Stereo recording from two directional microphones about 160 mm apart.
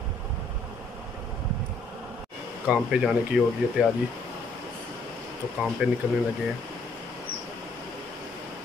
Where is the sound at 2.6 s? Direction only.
5° right (ahead or behind).